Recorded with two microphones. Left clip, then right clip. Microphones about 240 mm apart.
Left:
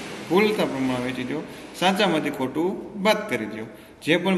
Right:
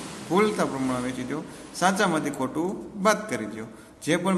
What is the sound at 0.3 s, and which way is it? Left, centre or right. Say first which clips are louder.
Speech: left 2 dB; centre.